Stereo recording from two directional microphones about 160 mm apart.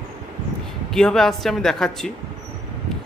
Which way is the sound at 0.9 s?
Centre (ahead or behind).